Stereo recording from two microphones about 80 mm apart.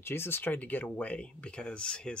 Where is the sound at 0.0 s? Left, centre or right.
Left.